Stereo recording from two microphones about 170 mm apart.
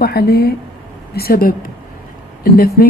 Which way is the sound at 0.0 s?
65° left (ahead or behind).